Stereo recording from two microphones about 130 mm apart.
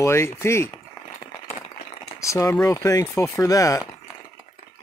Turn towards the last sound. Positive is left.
turn(degrees=25)  # may be behind; listen again after turning